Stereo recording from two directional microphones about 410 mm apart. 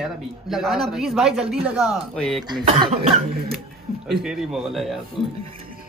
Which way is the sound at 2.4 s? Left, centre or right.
Centre.